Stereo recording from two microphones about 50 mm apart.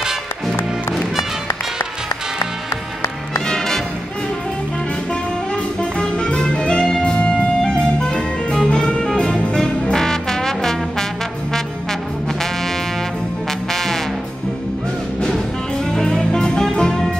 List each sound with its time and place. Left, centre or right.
3.4 s music: centre
5.8 s music: left
13.7 s music: centre
15.9 s music: centre